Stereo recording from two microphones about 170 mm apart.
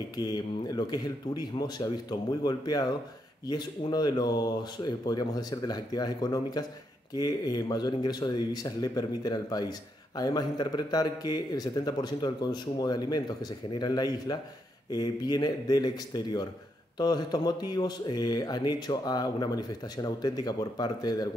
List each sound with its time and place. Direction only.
0.2 s speech: 25° left (ahead or behind)